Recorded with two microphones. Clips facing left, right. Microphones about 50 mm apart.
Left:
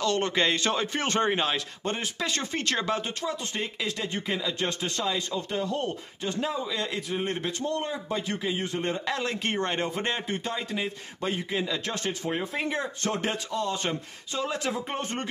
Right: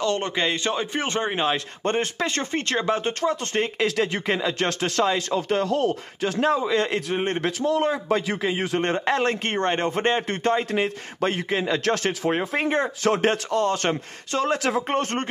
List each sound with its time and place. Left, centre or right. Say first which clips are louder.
0.0 s speech: right 2 dB; right
0.4 s speech: right 1 dB; centre
1.9 s speech: right 7 dB; right
3.1 s a man's voice: right 7 dB; right
3.8 s speech: right 9 dB; right
4.3 s a man's voice: right 6 dB; right
4.6 s speech: right 6 dB; right
5.0 s speech: right 7 dB; right
6.4 s a man's voice: right 10 dB; right
7.4 s a man's voice: right 8 dB; right
9.0 s a man's voice: right 7 dB; right
10.2 s a man's voice: right 8 dB; right
11.8 s speech: right 8 dB; right
12.3 s a man's voice: right 7 dB; right